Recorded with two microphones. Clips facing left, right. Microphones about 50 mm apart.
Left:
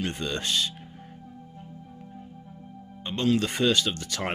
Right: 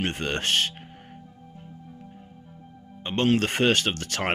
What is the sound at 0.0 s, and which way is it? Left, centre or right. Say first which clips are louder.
Speech: right 3 dB; right.